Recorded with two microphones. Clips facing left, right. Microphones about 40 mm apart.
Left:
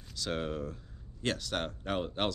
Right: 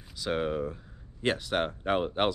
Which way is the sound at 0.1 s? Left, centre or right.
Centre.